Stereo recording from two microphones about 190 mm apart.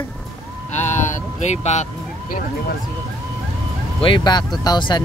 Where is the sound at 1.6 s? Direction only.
35° left (ahead or behind).